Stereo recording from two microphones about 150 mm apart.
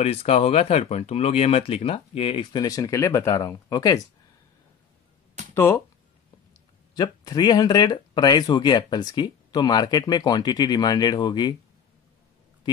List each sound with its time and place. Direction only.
0.0 s speech: 45° left (ahead or behind)
2.6 s speech: 20° left (ahead or behind)
5.5 s speech: 15° left (ahead or behind)
7.0 s speech: 25° left (ahead or behind)